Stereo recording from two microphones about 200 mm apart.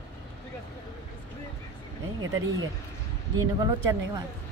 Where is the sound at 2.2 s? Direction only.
80° right.